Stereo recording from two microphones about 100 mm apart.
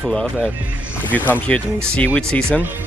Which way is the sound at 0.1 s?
10° left (ahead or behind).